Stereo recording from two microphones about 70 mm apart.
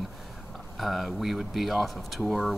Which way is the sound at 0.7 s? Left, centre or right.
Centre.